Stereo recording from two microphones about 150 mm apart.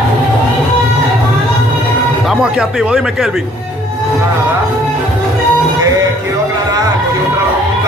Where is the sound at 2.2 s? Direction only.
5° right (ahead or behind).